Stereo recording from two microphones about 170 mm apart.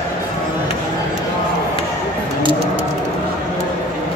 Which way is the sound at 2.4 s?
30° right (ahead or behind).